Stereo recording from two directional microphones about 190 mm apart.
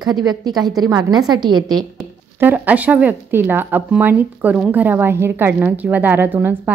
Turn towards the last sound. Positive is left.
turn(degrees=-10)  # may be behind; listen again after turning